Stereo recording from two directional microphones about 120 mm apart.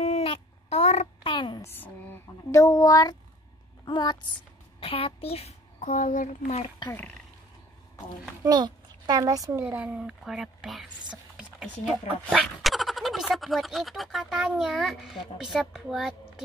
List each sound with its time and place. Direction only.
0.0 s a sound: 55° left (ahead or behind)
1.2 s a sound: 40° left (ahead or behind)
1.6 s speech: 20° left (ahead or behind)
2.5 s child singing: 25° left (ahead or behind)
3.8 s speech: 35° left (ahead or behind)
4.7 s a child's voice: 50° left (ahead or behind); by 6.6 s 90° left
8.5 s a child's voice: 35° right (ahead or behind); by 11.4 s 5° right (ahead or behind)
11.7 s speech: 10° left (ahead or behind)